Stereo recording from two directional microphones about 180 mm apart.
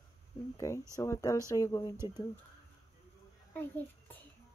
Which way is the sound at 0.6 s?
15° left (ahead or behind).